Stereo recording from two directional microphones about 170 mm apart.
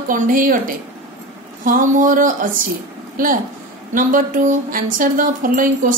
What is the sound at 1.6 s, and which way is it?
A woman's voice, 50° right (ahead or behind).